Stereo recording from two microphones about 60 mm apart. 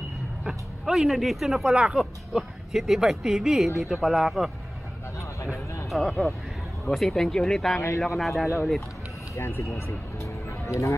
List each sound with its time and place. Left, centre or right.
0.4 s speech: centre
5.9 s speech: centre
9.3 s speech: left
9.8 s music: left